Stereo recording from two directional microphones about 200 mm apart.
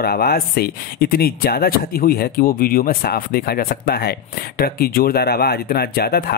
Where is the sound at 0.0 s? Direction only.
50° left (ahead or behind).